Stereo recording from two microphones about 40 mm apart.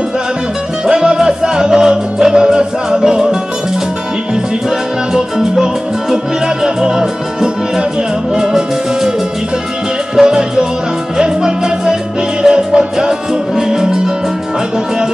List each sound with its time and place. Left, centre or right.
0.8 s music: centre
4.6 s salsa music: centre
8.4 s music: centre
10.1 s music: centre